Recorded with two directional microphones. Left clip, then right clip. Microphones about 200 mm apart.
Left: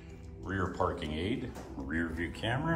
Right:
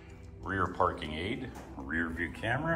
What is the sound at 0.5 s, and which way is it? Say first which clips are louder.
Speech: right 3 dB; 10° left (ahead or behind).